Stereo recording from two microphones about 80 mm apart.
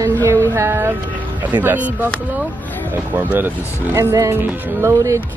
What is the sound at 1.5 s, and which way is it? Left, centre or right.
Speech, right.